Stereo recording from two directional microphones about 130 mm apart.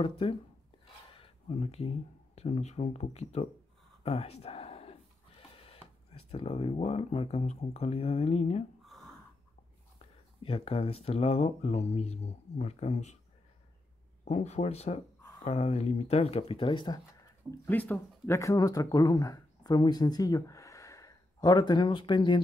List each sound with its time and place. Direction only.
0.0 s speech: 40° left (ahead or behind)
10.4 s speech: 45° left (ahead or behind)
14.2 s speech: 60° left (ahead or behind); by 17.0 s 35° left (ahead or behind)
17.5 s speech: 15° left (ahead or behind); by 22.4 s 40° left (ahead or behind)